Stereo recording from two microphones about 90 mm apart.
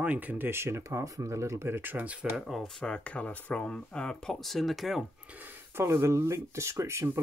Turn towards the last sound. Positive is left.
turn(degrees=-30)  # may be behind; listen again after turning